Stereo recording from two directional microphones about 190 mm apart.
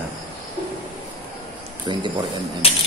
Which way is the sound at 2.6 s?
30° left (ahead or behind).